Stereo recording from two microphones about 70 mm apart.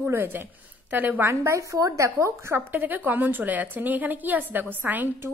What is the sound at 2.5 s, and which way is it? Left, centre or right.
A woman's voice, right.